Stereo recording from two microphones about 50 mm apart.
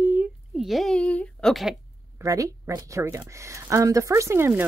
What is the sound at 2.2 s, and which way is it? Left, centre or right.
Speech, right.